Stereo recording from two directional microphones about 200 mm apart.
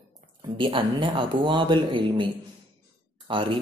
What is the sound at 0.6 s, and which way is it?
Speech, 25° right (ahead or behind).